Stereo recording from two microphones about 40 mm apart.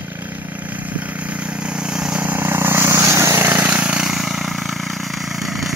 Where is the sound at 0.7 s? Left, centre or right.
Right.